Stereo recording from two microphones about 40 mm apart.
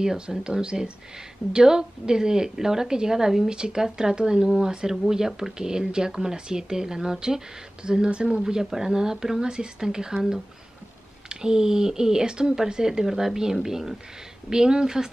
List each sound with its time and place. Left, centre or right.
0.0 s speech: centre
8.4 s speech: centre